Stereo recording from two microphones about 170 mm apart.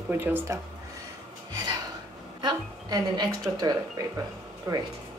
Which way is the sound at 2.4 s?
25° right (ahead or behind).